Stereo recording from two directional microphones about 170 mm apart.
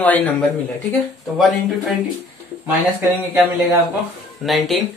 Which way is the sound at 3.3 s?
15° right (ahead or behind).